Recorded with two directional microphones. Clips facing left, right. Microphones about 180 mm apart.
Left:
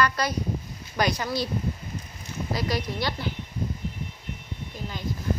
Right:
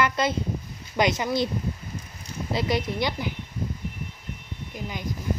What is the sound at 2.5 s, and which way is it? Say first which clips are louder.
Speech: right 4 dB; 20° right (ahead or behind).